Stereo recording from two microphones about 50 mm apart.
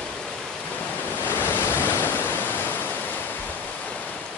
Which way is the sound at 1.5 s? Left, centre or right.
Left.